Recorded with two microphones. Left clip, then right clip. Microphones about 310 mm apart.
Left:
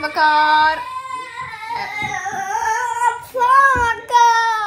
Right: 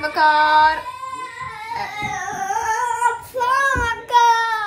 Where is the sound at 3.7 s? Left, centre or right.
Centre.